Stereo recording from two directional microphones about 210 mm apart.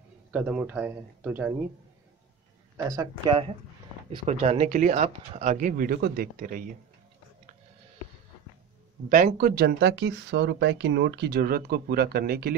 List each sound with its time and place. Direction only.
0.3 s speech: 5° right (ahead or behind)
2.8 s speech: 15° right (ahead or behind); by 6.6 s 40° right (ahead or behind)
9.1 s speech: 40° right (ahead or behind)